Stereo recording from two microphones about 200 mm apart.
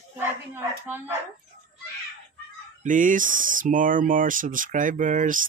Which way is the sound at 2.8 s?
40° right (ahead or behind).